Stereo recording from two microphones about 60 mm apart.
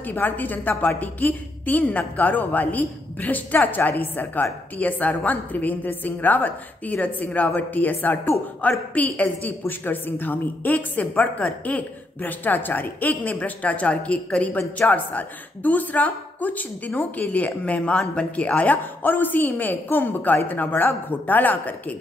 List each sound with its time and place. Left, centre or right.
0.0 s a woman's voice: left